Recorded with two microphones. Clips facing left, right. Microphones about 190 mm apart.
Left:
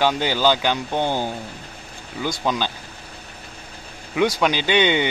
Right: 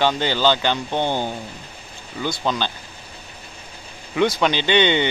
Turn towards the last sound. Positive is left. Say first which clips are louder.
# right 1 dB
turn(degrees=10)  # may be behind; listen again after turning